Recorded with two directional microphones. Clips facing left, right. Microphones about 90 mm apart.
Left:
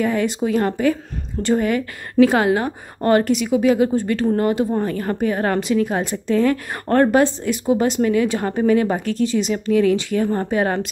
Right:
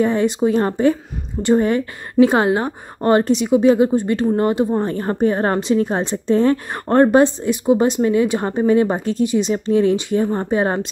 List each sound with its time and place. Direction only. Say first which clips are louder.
0.0 s a woman's voice: right 3 dB; 25° right (ahead or behind)